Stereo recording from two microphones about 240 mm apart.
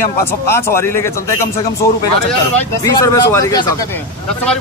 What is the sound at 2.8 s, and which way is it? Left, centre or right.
Speech, centre.